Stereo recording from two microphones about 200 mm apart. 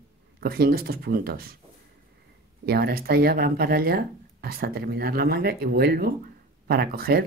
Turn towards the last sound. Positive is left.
turn(degrees=-50)  # may be behind; listen again after turning